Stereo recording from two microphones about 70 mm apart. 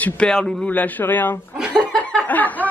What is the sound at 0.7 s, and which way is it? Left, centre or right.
Speech, left.